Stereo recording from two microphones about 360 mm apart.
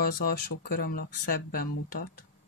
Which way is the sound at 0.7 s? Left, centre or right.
Left.